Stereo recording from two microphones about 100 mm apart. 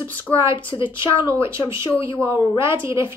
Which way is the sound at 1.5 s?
30° right (ahead or behind).